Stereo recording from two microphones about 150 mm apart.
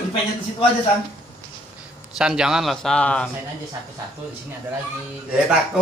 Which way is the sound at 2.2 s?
5° right (ahead or behind).